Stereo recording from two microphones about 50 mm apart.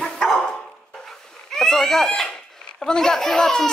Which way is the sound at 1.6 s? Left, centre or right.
Centre.